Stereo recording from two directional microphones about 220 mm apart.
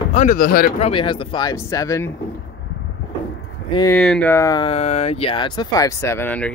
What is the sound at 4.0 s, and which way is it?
Speech, 5° left (ahead or behind).